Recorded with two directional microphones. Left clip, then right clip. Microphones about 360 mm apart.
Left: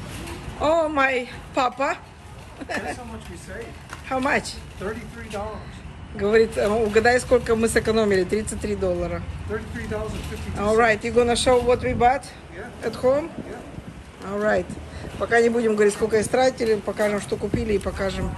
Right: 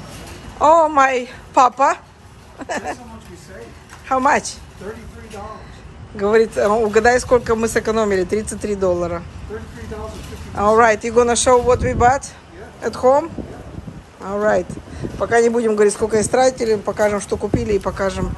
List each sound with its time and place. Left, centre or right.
0.6 s a woman's voice: centre
4.1 s speech: centre
6.1 s speech: centre
10.6 s speech: centre
14.3 s a man's voice: centre